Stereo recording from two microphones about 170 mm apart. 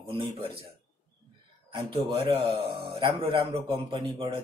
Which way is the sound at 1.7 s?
30° right (ahead or behind).